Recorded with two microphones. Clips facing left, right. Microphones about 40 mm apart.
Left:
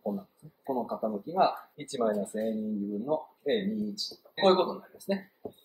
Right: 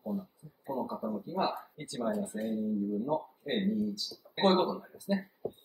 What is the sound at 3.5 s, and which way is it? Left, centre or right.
Speech, right.